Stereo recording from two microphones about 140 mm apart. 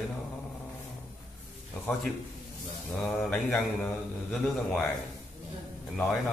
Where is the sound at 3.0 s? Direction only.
5° left (ahead or behind).